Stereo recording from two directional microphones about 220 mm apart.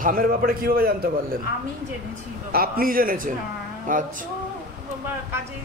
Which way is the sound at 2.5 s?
40° right (ahead or behind).